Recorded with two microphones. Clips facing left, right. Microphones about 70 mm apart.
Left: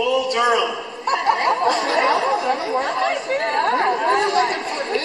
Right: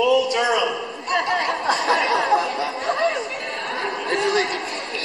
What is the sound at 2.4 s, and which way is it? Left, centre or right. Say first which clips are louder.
Chatter: left 3 dB; left.